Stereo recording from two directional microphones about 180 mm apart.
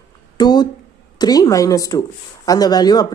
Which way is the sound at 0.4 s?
25° left (ahead or behind).